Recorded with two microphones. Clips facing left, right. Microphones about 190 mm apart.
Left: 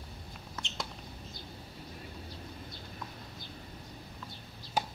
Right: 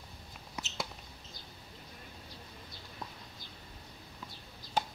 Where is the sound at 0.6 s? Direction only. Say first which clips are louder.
Right 1 dB; 5° right (ahead or behind).